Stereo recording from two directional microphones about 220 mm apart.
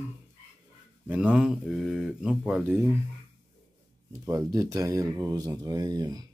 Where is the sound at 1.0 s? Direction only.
5° right (ahead or behind).